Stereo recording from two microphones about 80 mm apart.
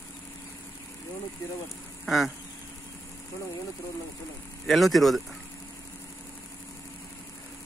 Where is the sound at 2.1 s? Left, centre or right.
Centre.